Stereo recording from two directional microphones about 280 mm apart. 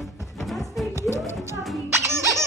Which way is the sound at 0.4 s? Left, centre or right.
Centre.